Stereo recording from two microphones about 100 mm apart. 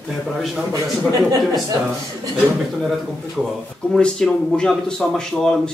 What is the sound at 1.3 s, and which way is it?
Speech, 35° right (ahead or behind).